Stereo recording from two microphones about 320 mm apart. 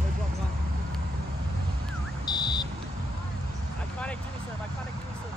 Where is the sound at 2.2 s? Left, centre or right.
Centre.